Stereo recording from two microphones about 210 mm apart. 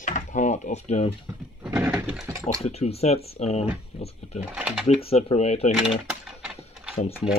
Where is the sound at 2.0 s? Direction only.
5° right (ahead or behind).